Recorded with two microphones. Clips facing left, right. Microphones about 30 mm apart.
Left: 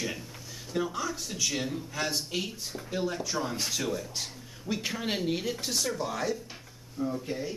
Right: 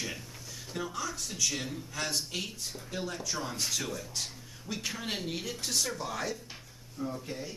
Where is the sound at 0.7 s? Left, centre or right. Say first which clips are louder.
Left 5 dB; centre.